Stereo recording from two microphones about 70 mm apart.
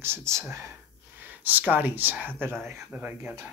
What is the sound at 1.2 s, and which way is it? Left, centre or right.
Speech, right.